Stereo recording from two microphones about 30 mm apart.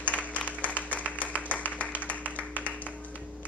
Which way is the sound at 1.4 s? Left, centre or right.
Left.